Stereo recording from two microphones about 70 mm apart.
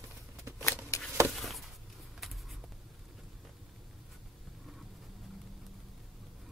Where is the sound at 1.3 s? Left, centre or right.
Centre.